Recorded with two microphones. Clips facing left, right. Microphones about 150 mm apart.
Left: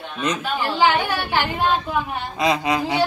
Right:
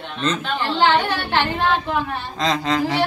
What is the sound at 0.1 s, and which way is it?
A woman's voice, 10° left (ahead or behind).